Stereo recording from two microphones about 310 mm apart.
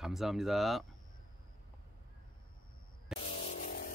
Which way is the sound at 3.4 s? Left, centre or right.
Left.